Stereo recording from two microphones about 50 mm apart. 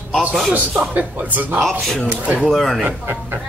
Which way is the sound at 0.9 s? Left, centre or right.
Right.